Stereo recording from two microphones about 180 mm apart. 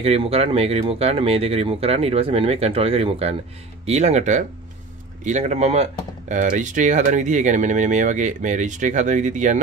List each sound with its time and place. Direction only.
0.0 s speech: 35° right (ahead or behind)